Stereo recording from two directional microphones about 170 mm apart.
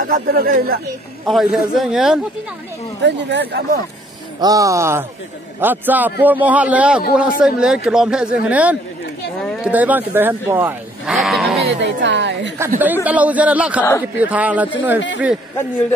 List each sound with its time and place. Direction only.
0.0 s speech: 55° right (ahead or behind)
1.2 s a man's voice: centre (ahead or behind)
3.0 s speech: 90° right
4.4 s speech: 20° right (ahead or behind)
11.1 s a sound: centre (ahead or behind)
11.8 s speech: 90° right
12.5 s speech: 15° right (ahead or behind)